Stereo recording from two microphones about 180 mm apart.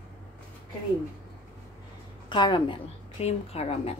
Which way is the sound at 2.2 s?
25° left (ahead or behind).